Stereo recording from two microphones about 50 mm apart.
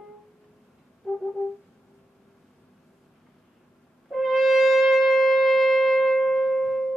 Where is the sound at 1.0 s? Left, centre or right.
Centre.